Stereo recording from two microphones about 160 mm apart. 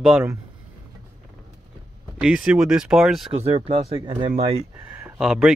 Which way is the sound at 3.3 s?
40° right (ahead or behind).